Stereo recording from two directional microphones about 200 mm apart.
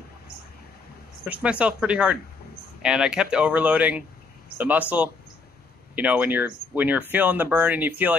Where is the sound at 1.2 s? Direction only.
5° right (ahead or behind).